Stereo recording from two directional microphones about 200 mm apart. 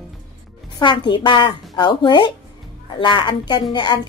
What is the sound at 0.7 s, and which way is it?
A woman's voice, 25° left (ahead or behind).